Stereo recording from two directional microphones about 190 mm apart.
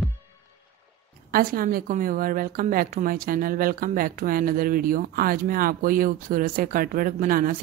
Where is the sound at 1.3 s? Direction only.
50° right (ahead or behind).